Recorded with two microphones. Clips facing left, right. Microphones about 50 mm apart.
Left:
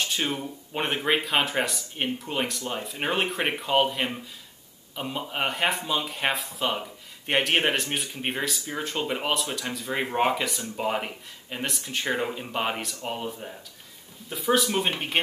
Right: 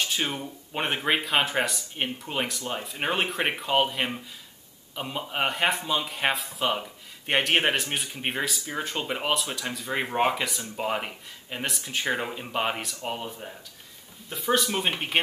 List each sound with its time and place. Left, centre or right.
0.0 s speech: centre